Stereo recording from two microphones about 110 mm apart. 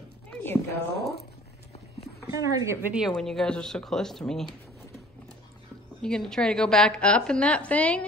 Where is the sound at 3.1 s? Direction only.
5° left (ahead or behind).